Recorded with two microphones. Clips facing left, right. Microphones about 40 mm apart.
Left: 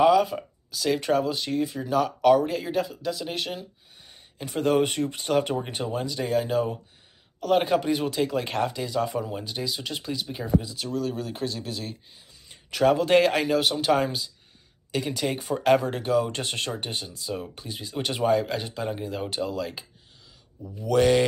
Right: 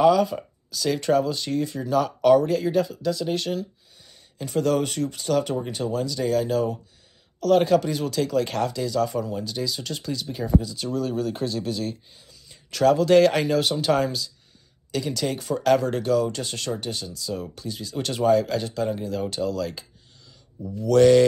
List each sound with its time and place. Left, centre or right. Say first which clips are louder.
0.0 s speech: right 1 dB; centre
4.0 s speech: right 3 dB; left
10.8 s speech: right 3 dB; centre
12.7 s speech: right 3 dB; centre
13.3 s speech: right 1 dB; centre
16.3 s speech: right 1 dB; left; by 21.3 s centre